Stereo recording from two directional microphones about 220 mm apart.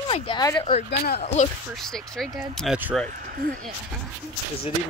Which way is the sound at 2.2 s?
Centre (ahead or behind).